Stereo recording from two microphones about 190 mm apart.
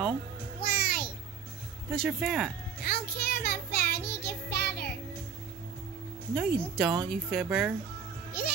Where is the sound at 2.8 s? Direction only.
55° left (ahead or behind).